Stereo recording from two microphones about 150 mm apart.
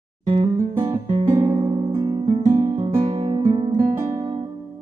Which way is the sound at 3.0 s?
40° right (ahead or behind).